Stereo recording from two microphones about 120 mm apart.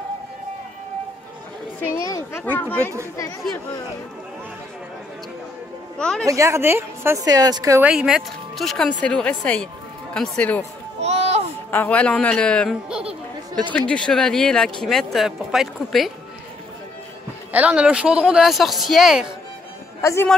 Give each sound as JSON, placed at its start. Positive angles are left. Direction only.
{"t": 2.0, "sound": "speech", "side_deg": 30}
{"t": 2.4, "sound": "a man's voice", "side_deg": 15}
{"t": 5.9, "sound": "speech", "side_deg": 5}
{"t": 6.2, "sound": "a woman's voice", "side_deg": -25}
{"t": 7.2, "sound": "speech", "side_deg": -30}
{"t": 7.8, "sound": "speech", "side_deg": -5}
{"t": 11.0, "sound": "a sound", "side_deg": -60}
{"t": 11.7, "sound": "a man's voice", "side_deg": 10}
{"t": 13.7, "sound": "speech", "side_deg": 10}
{"t": 17.5, "sound": "speech", "side_deg": -10}
{"t": 20.0, "sound": "a man's voice", "side_deg": 25}